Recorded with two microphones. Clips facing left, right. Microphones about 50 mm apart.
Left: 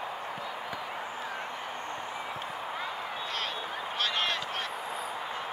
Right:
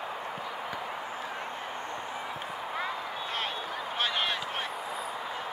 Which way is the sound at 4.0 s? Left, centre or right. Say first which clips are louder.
Even; centre.